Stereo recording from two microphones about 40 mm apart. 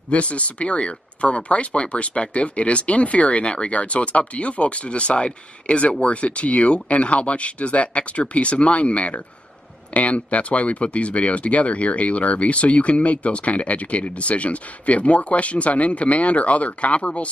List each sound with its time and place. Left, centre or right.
0.1 s speech: left